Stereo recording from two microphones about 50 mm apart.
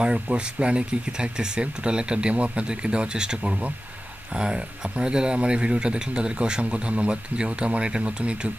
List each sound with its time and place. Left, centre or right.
0.0 s speech: centre